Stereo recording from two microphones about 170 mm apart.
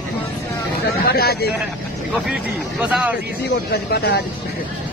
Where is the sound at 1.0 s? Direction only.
65° left (ahead or behind).